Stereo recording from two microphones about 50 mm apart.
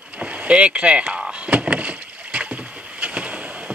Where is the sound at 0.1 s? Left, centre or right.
Right.